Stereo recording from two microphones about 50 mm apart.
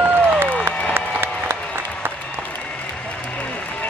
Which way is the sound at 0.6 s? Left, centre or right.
Right.